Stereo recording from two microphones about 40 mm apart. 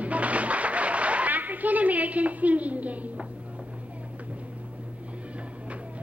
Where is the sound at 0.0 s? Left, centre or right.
Right.